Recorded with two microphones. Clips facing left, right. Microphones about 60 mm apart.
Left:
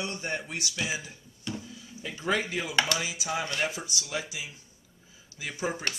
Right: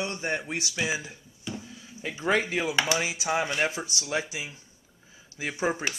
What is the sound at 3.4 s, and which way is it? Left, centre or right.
Speech, centre.